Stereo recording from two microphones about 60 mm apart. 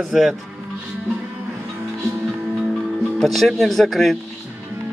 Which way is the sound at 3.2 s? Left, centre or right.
Centre.